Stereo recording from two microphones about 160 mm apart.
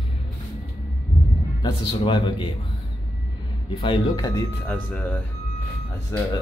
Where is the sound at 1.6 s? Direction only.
30° left (ahead or behind).